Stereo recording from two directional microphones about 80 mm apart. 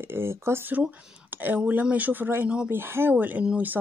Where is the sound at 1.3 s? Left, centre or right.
Right.